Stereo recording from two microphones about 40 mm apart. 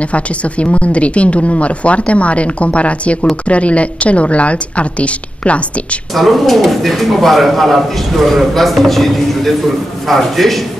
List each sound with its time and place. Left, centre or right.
0.0 s a woman's voice: left
6.1 s speech: centre